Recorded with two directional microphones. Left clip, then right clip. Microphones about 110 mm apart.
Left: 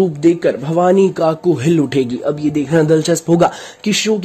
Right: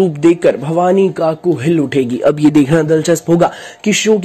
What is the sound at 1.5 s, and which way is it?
Speech, 25° left (ahead or behind).